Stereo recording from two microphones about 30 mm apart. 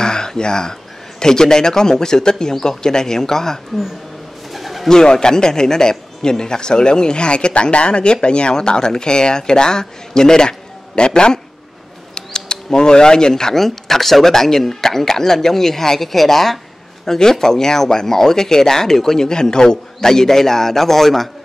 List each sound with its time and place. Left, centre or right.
0.0 s a sound: left
1.2 s a man's voice: left
4.6 s pigeon: centre
4.8 s a man's voice: left